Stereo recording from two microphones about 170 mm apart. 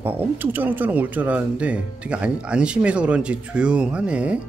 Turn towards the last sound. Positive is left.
turn(degrees=-5)  # may be behind; listen again after turning